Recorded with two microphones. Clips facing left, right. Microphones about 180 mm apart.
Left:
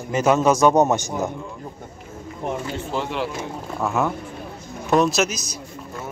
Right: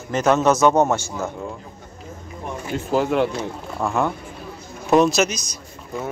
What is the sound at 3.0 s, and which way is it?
Speech, centre (ahead or behind).